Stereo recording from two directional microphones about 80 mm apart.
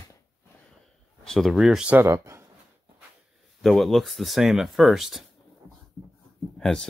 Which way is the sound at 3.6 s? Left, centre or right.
Centre.